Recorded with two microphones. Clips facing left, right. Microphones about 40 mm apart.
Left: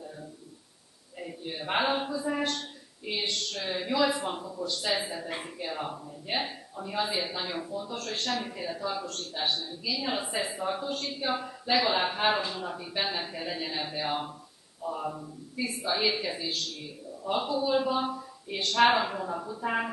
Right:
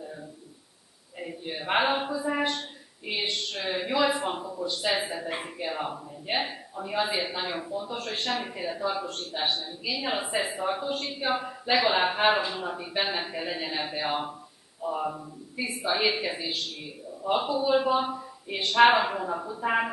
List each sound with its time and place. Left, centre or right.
1.2 s speech: centre